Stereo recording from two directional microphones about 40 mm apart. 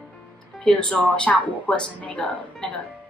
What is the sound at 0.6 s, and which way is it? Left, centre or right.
Speech, centre.